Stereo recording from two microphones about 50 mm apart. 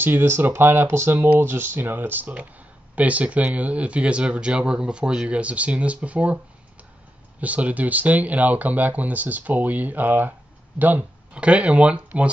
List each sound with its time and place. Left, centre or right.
0.0 s speech: right
1.1 s speech: right
1.4 s speech: right
11.3 s speech: right